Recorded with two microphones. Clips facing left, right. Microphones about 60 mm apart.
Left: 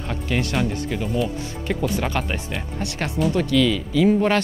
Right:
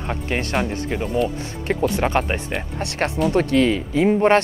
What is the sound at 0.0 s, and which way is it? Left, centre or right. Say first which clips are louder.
Speech: even; right.